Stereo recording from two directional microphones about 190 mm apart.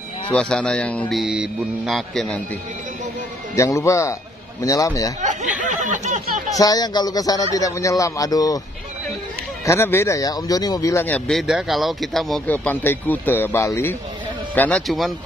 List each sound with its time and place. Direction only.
0.3 s speech: 5° left (ahead or behind)
3.5 s speech: 15° left (ahead or behind)
5.2 s a sound: 40° right (ahead or behind)
6.5 s speech: 20° left (ahead or behind)
9.7 s speech: 10° left (ahead or behind)